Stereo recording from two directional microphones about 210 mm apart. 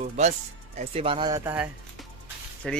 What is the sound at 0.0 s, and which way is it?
Speech, 30° right (ahead or behind).